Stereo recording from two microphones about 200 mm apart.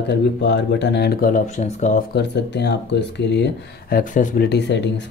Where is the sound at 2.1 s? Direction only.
55° left (ahead or behind).